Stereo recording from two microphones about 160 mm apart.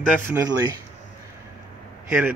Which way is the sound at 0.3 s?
20° right (ahead or behind).